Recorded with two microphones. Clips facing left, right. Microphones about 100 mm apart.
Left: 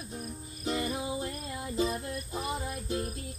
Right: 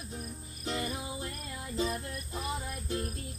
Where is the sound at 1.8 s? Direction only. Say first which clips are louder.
Left 2 dB; 20° left (ahead or behind).